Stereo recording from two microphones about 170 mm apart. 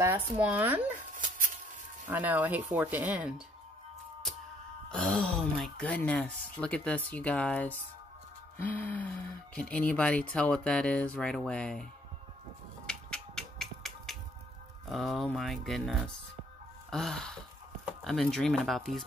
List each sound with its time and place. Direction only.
0.0 s speech: 10° right (ahead or behind)
0.9 s a sound: 50° right (ahead or behind)
2.0 s speech: 10° right (ahead or behind)
4.9 s speech: 5° left (ahead or behind)
12.8 s music: 5° left (ahead or behind)
14.9 s speech: centre (ahead or behind)